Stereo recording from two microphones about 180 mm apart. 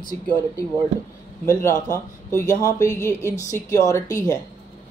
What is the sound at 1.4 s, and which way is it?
A man's voice, 15° left (ahead or behind).